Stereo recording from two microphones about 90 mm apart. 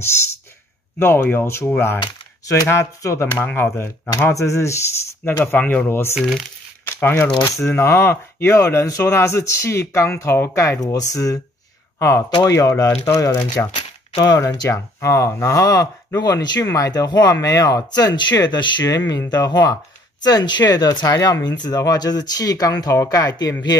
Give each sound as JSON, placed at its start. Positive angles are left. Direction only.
{"t": 0.9, "sound": "speech", "side_deg": 25}
{"t": 3.3, "sound": "speech", "side_deg": 20}
{"t": 5.4, "sound": "speech", "side_deg": 20}
{"t": 5.9, "sound": "speech", "side_deg": 30}
{"t": 6.1, "sound": "speech", "side_deg": 0}
{"t": 6.9, "sound": "speech", "side_deg": 25}
{"t": 7.4, "sound": "speech", "side_deg": 35}
{"t": 10.8, "sound": "speech", "side_deg": 40}